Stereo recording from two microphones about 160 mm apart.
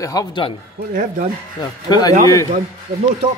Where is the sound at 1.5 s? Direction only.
25° left (ahead or behind).